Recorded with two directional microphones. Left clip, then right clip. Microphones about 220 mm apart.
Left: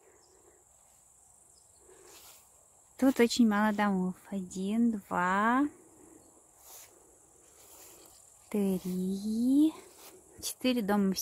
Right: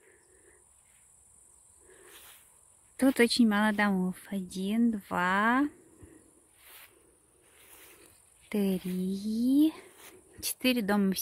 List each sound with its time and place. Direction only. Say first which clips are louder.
3.0 s speech: right 1 dB; centre (ahead or behind)
8.5 s speech: right 1 dB; centre (ahead or behind)
9.1 s a sound: right 1 dB; 25° left (ahead or behind)
9.4 s speech: right 1 dB; centre (ahead or behind)